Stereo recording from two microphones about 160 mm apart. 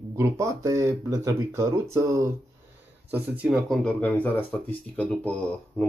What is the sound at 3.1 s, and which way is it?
Speech, 5° right (ahead or behind).